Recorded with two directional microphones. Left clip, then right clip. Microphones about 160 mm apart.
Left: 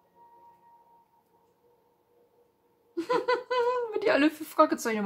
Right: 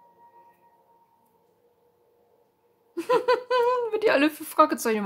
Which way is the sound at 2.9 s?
40° right (ahead or behind).